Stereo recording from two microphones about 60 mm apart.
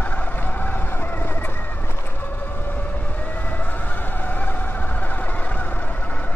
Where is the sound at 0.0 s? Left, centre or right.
Left.